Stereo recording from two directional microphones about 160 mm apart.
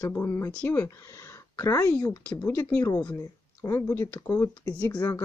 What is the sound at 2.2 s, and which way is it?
Speech, 10° left (ahead or behind).